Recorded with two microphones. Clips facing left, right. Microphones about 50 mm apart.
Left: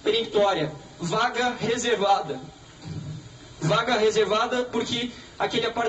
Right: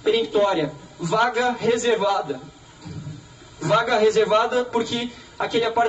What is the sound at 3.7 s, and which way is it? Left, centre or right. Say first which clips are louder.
A man's voice: right 4 dB; right.